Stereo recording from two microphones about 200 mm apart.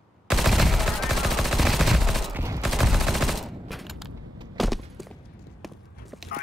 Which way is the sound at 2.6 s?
Centre (ahead or behind).